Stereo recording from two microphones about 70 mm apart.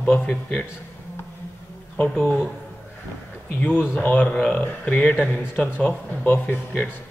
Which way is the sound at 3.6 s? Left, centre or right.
Left.